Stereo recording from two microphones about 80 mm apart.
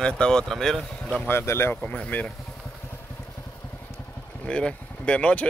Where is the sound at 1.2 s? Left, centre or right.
Left.